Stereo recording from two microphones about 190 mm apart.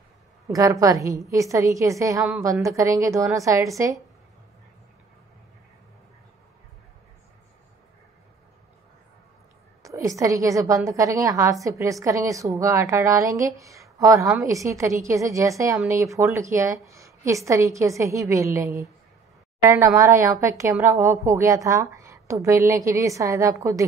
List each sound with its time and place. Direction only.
0.5 s a woman's voice: 15° right (ahead or behind)
9.8 s a woman's voice: 15° right (ahead or behind)